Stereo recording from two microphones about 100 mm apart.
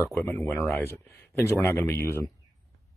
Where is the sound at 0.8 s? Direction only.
30° left (ahead or behind).